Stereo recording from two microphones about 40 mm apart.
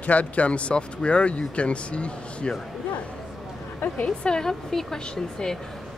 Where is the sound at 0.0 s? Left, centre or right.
Left.